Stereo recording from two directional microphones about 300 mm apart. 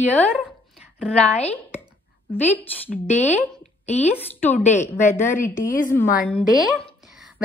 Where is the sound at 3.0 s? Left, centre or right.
Left.